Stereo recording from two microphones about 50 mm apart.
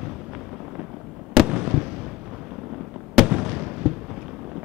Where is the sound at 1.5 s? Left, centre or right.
Centre.